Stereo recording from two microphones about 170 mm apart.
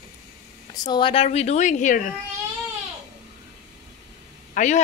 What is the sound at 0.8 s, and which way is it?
Speech, 30° left (ahead or behind).